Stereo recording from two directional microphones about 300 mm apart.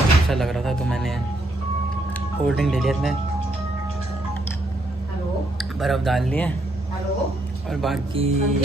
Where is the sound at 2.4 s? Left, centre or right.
Centre.